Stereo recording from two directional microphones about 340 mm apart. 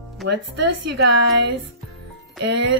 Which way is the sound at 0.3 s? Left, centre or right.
Right.